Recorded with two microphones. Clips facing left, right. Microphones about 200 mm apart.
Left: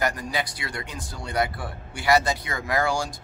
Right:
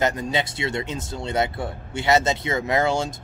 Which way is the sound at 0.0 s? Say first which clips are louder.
Right 4 dB; 25° right (ahead or behind).